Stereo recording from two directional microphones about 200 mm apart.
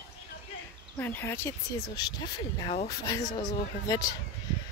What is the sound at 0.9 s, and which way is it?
Speech, 10° left (ahead or behind).